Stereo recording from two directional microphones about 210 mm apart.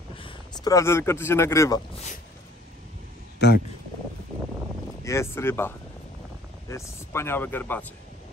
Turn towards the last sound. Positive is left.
turn(degrees=10)  # may be behind; listen again after turning